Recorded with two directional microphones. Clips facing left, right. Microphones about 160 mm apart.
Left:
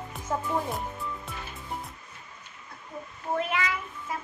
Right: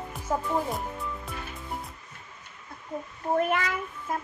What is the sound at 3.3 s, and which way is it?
Child singing, 50° right (ahead or behind).